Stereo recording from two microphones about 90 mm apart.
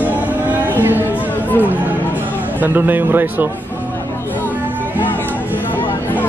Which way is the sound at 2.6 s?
20° right (ahead or behind).